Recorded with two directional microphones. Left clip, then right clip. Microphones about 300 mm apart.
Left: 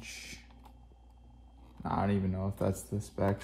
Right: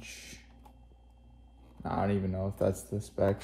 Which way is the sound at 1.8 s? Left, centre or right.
Left.